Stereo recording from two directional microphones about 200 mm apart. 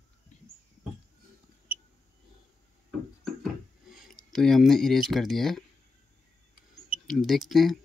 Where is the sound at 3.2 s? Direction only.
Centre (ahead or behind).